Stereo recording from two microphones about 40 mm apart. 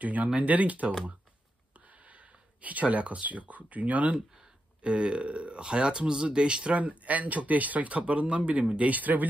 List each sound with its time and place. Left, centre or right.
0.0 s speech: right
2.0 s speech: right
4.8 s speech: right
6.8 s speech: right